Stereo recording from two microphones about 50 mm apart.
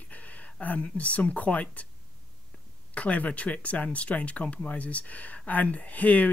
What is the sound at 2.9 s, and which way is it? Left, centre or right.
Speech, left.